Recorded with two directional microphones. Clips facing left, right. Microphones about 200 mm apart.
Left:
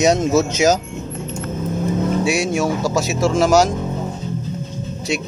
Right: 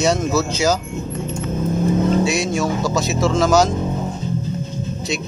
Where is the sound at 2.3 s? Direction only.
10° left (ahead or behind).